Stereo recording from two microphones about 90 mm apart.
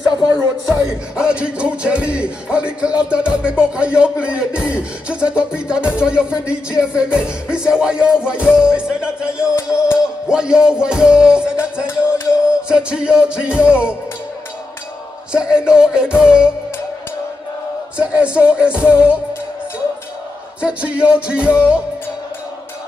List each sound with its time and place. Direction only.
0.7 s speech: 10° right (ahead or behind)
12.0 s music: 10° right (ahead or behind)
15.3 s speech: 10° right (ahead or behind)
17.9 s speech: 15° right (ahead or behind)
20.6 s speech: 15° right (ahead or behind)